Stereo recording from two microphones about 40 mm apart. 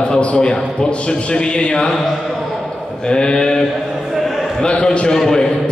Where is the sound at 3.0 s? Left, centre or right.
Centre.